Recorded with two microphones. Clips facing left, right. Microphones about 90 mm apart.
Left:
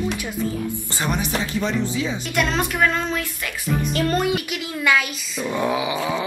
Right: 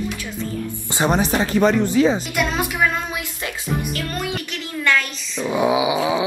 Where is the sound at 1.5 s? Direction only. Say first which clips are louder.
Right 9 dB; 55° right (ahead or behind).